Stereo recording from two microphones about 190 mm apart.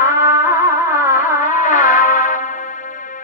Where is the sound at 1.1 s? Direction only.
40° left (ahead or behind).